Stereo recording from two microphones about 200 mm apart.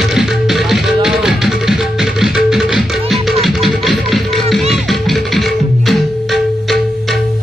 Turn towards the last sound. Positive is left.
turn(degrees=0)  # may be behind; listen again after turning